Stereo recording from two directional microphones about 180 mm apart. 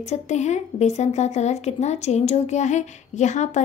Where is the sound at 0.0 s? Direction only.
40° left (ahead or behind).